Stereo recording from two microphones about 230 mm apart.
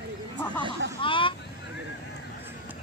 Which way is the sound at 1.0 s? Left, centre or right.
Left.